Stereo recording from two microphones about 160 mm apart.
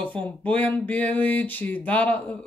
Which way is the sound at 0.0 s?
10° left (ahead or behind).